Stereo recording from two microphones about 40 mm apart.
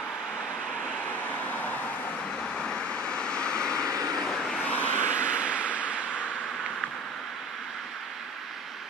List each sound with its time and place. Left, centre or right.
0.8 s vehicle: left
2.5 s vehicle: centre
4.6 s vehicle: left
4.9 s a sound: right